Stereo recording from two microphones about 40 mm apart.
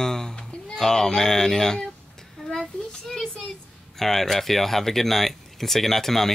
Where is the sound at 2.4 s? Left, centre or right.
Centre.